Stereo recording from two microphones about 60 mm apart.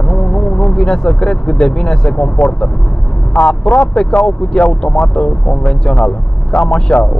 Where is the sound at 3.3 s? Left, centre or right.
Centre.